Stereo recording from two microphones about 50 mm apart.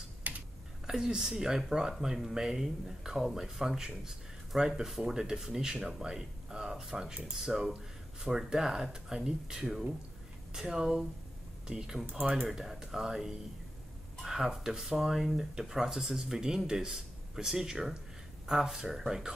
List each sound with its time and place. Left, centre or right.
0.8 s speech: centre
12.4 s speech: centre